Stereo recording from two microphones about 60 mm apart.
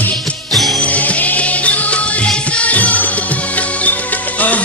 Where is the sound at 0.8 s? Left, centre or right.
Left.